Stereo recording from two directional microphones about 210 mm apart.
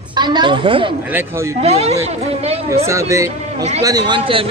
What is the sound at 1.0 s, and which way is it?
Speech, 10° right (ahead or behind).